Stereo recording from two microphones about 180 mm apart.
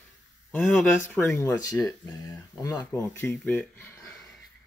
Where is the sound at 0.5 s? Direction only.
5° left (ahead or behind).